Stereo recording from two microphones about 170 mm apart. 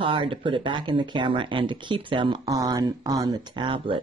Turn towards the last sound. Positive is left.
turn(degrees=-30)  # may be behind; listen again after turning